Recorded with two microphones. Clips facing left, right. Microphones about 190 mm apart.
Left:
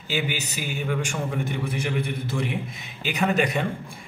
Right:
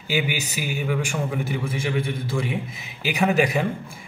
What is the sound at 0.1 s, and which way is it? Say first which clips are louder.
A man's voice: right 3 dB; 10° right (ahead or behind).